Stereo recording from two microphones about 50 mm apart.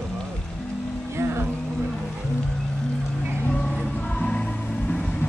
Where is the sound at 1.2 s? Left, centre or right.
Right.